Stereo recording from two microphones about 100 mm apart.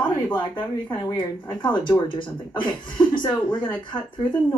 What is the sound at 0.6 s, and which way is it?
Speech, 50° left (ahead or behind).